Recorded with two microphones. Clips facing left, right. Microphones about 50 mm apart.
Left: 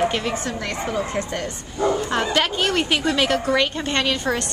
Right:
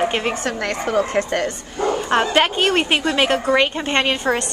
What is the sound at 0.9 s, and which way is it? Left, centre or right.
Speech, right.